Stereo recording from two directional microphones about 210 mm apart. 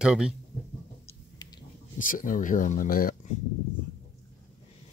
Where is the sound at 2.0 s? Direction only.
40° left (ahead or behind).